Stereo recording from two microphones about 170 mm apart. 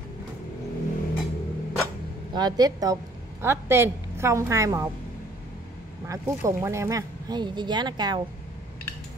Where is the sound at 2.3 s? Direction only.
25° right (ahead or behind).